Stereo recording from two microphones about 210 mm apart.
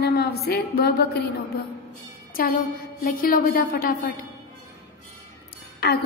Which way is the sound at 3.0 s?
40° left (ahead or behind).